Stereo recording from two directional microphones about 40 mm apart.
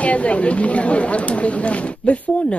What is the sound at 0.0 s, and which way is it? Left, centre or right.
Speech, left.